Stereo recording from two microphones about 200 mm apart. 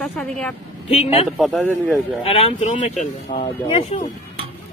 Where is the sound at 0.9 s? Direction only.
30° left (ahead or behind).